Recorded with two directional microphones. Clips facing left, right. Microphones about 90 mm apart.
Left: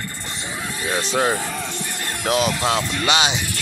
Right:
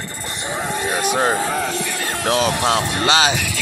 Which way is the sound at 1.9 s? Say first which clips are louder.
Right 5 dB; 90° right.